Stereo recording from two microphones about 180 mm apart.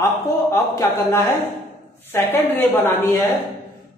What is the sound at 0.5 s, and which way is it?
A woman's voice, 15° left (ahead or behind).